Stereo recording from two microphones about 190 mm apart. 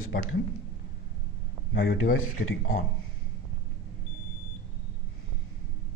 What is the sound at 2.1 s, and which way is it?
Speech, 90° left.